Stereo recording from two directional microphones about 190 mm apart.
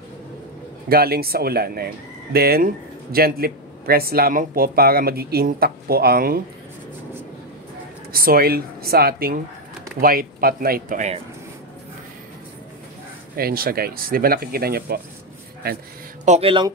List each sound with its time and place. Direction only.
0.8 s speech: 55° right (ahead or behind)
8.1 s speech: 50° right (ahead or behind)
13.4 s speech: 50° right (ahead or behind)
16.3 s speech: 30° right (ahead or behind)